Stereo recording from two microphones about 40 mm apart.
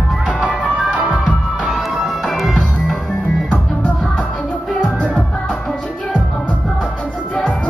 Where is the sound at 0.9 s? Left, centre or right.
Right.